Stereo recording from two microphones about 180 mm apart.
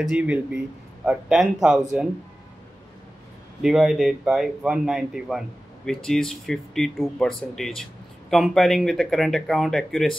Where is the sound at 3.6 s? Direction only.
Centre (ahead or behind).